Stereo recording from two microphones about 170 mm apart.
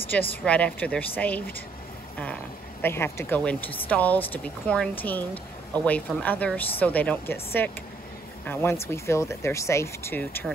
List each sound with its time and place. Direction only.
0.1 s speech: 10° left (ahead or behind)
2.8 s speech: 15° left (ahead or behind)